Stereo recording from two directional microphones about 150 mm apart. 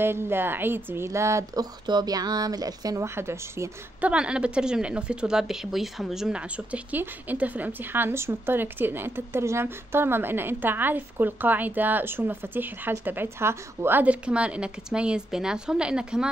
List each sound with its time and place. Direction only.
0.0 s speech: 15° right (ahead or behind)
4.1 s a woman's voice: 5° right (ahead or behind)